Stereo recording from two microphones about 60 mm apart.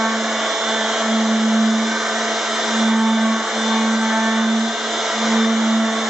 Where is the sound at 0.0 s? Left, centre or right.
Centre.